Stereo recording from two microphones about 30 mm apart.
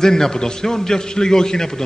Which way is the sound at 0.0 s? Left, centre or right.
Centre.